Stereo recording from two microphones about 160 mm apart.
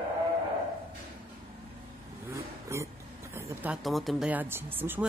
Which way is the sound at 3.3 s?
15° right (ahead or behind).